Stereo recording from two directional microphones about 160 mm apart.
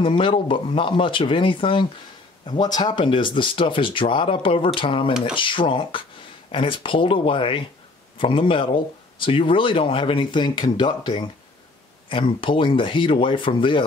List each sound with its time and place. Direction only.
0.0 s speech: 30° left (ahead or behind)